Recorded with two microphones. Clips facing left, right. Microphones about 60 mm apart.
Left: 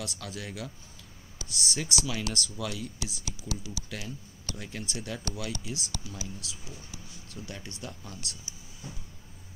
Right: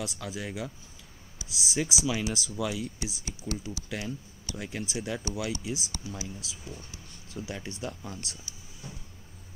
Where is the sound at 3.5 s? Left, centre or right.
Right.